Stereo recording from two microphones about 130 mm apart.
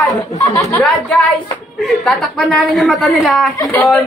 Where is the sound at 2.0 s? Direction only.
5° left (ahead or behind).